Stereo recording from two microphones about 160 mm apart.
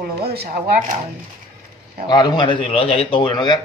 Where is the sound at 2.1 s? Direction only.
25° left (ahead or behind).